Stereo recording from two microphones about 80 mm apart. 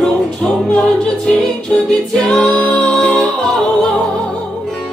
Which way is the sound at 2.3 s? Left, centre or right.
Centre.